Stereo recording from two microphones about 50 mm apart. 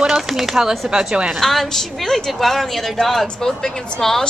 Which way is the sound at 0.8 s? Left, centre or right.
Centre.